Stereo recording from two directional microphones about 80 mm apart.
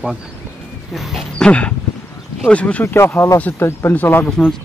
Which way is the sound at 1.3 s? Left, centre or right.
Centre.